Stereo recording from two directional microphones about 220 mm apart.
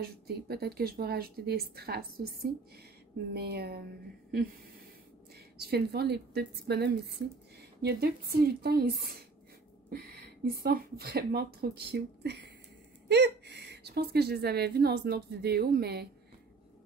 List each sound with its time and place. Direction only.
0.0 s a woman's voice: 45° right (ahead or behind)
5.3 s a woman's voice: 45° right (ahead or behind)